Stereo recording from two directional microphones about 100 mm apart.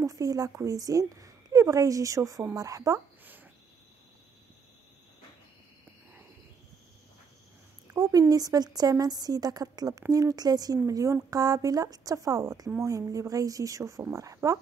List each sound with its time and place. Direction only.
0.0 s a woman's voice: 35° right (ahead or behind)
7.9 s speech: 35° right (ahead or behind)